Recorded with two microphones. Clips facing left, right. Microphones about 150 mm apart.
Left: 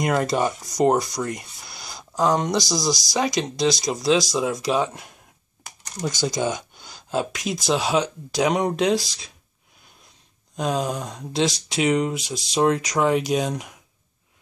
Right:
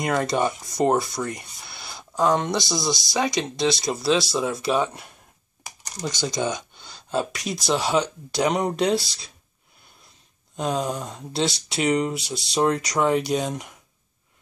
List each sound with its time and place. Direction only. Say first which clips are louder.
0.0 s speech: left 1 dB; 5° left (ahead or behind)
6.2 s speech: left 1 dB; 5° left (ahead or behind)
10.5 s speech: left 1 dB; centre (ahead or behind)